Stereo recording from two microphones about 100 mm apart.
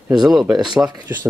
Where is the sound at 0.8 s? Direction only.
20° right (ahead or behind).